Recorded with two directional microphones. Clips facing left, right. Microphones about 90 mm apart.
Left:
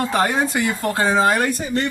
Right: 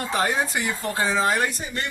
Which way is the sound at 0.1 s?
55° left (ahead or behind).